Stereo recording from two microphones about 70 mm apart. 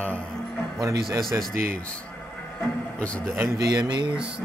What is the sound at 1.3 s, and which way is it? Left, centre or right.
Speech, right.